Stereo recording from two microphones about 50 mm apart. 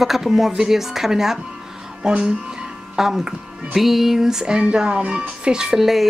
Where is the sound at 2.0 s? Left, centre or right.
Centre.